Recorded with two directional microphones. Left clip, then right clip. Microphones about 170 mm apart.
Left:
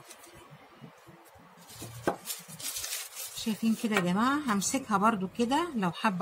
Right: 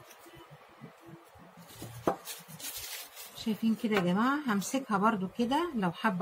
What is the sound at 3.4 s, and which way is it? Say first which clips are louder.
Speech: left 1 dB; 20° left (ahead or behind).